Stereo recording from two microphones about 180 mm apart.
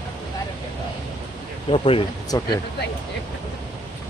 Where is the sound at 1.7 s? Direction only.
30° left (ahead or behind).